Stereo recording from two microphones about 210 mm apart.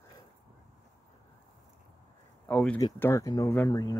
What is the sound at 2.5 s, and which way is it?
Speech, 5° left (ahead or behind).